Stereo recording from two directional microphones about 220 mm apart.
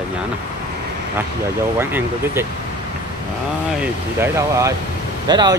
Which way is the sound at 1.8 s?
10° right (ahead or behind).